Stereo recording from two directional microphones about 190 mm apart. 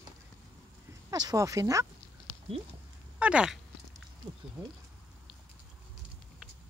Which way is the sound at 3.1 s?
5° right (ahead or behind).